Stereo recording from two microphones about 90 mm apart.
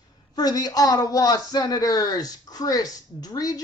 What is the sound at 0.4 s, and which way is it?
Speech, 45° left (ahead or behind).